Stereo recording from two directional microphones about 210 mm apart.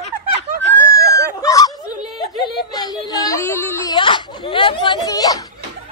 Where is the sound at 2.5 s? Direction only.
20° left (ahead or behind).